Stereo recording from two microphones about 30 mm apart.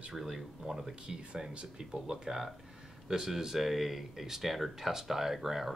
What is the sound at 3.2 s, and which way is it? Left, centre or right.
Speech, centre.